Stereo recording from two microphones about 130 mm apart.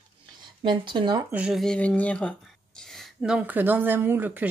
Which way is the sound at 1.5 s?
5° left (ahead or behind).